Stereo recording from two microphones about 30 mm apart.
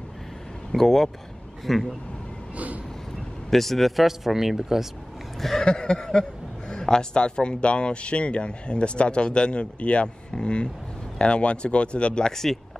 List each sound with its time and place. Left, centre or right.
0.7 s speech: centre
2.5 s vehicle: right
3.4 s speech: centre
5.6 s a sound: left
6.7 s speech: left